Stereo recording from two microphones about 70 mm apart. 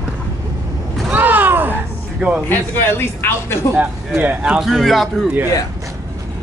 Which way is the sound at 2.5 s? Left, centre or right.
Left.